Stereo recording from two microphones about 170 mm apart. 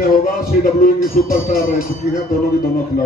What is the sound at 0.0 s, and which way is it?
Speech, 55° left (ahead or behind).